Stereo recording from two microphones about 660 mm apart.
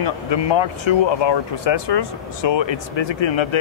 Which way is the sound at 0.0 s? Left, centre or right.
Left.